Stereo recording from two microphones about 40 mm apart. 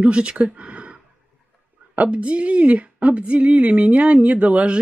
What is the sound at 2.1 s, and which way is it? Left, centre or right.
A woman's voice, right.